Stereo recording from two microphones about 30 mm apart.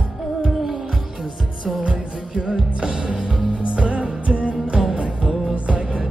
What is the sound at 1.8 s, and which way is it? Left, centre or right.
Music, right.